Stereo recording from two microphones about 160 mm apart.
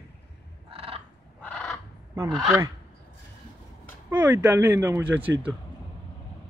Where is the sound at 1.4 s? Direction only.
10° left (ahead or behind).